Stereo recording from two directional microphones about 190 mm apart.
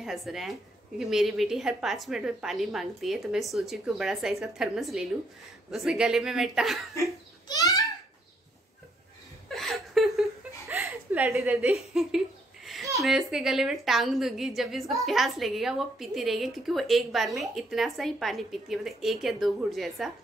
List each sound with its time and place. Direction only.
0.0 s a woman's voice: centre (ahead or behind)
7.0 s a child's voice: 20° left (ahead or behind)
9.5 s a sound: centre (ahead or behind)
10.7 s chuckle: 10° right (ahead or behind)
11.9 s a woman's voice: centre (ahead or behind)